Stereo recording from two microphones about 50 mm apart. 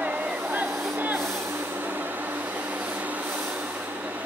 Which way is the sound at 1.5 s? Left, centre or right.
Right.